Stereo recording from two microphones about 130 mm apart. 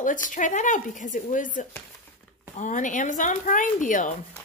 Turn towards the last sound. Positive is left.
turn(degrees=85)